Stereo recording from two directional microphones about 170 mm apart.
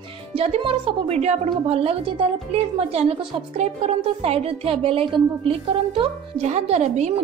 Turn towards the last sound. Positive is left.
turn(degrees=-40)  # may be behind; listen again after turning